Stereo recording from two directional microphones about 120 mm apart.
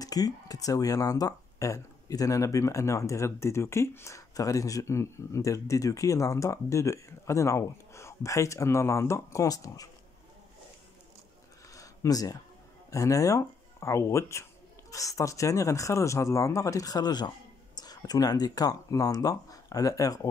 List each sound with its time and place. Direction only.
0.0 s speech: 30° left (ahead or behind)
11.7 s a sound: 30° left (ahead or behind)
12.9 s speech: 25° left (ahead or behind)